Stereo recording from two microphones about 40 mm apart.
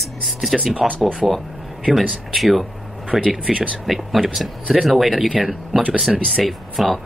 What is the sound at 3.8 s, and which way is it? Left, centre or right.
Speech, centre.